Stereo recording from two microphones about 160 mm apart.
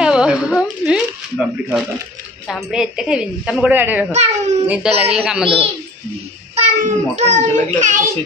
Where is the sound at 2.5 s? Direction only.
Centre (ahead or behind).